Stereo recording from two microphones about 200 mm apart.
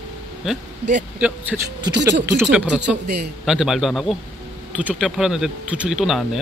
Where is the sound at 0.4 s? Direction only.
5° right (ahead or behind).